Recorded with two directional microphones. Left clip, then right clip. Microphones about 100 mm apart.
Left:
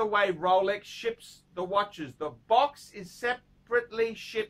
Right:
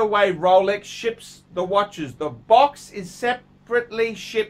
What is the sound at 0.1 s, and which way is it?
Speech, 25° right (ahead or behind).